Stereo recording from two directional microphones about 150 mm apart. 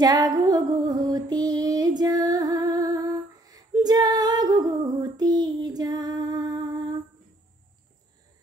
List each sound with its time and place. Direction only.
0.0 s female singing: 25° right (ahead or behind)